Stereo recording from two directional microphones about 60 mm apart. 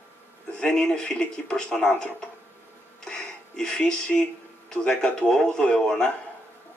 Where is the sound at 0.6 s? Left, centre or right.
Centre.